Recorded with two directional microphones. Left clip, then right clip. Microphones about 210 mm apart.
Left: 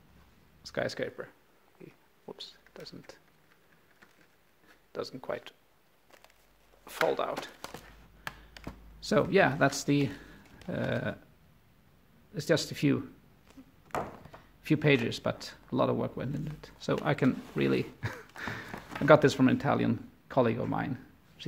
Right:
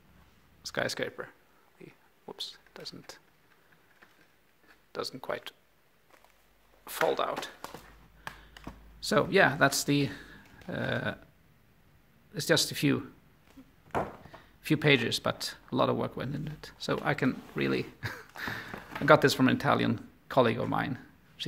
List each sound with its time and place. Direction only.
0.6 s speech: centre (ahead or behind)
1.8 s a sound: centre (ahead or behind)
4.9 s speech: centre (ahead or behind)
7.1 s speech: centre (ahead or behind)
8.2 s tap: 20° left (ahead or behind)
9.0 s speech: 5° left (ahead or behind)
12.4 s speech: centre (ahead or behind)
14.6 s speech: centre (ahead or behind)